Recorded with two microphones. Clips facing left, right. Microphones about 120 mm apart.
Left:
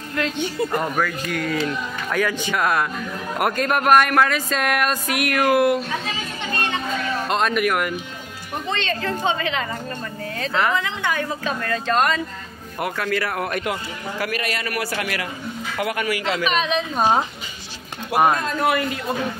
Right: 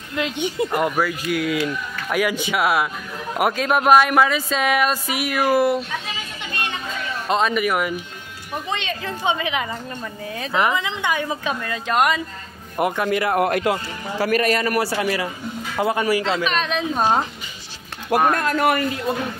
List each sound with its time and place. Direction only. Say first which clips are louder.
0.1 s speech: right 1 dB; 15° right (ahead or behind)
7.2 s speech: right 2 dB; centre (ahead or behind)
8.7 s speech: left 3 dB; 15° right (ahead or behind); by 14.3 s 30° right (ahead or behind)
14.3 s a man's voice: right 7 dB; 40° right (ahead or behind)
16.4 s speech: left 1 dB; 5° left (ahead or behind)
18.4 s a man's voice: right 2 dB; 65° right (ahead or behind)